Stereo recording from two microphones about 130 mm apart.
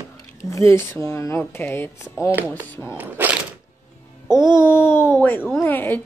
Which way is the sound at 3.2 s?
15° right (ahead or behind).